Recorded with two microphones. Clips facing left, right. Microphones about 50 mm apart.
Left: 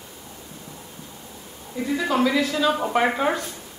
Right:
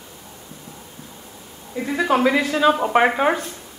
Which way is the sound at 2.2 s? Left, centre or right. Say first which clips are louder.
Right 2 dB; right.